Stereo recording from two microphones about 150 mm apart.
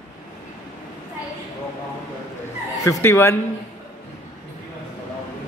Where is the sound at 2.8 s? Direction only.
15° left (ahead or behind).